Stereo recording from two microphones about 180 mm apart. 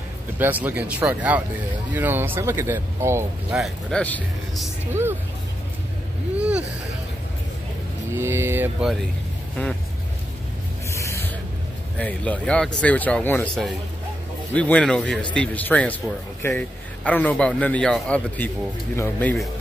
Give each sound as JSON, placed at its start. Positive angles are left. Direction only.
{"t": 0.4, "sound": "speech", "side_deg": -10}
{"t": 3.5, "sound": "speech", "side_deg": 0}
{"t": 6.3, "sound": "a sound", "side_deg": -5}
{"t": 8.1, "sound": "speech", "side_deg": -15}
{"t": 10.9, "sound": "spray", "side_deg": 15}
{"t": 12.0, "sound": "a man's voice", "side_deg": 5}